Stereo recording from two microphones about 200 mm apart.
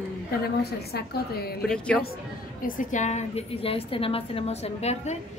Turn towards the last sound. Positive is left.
turn(degrees=30)  # may be behind; listen again after turning